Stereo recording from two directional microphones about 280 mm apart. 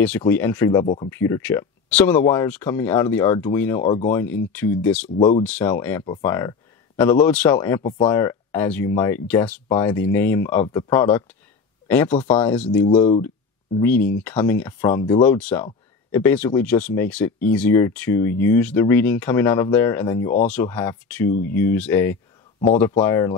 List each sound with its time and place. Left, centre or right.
0.2 s speech: centre
0.8 s speech: left
1.1 s speech: centre
12.8 s speech: left
13.7 s speech: centre